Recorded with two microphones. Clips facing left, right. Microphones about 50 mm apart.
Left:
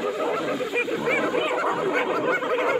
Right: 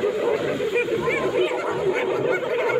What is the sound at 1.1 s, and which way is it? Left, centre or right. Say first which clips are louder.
Dog: left 1 dB; left.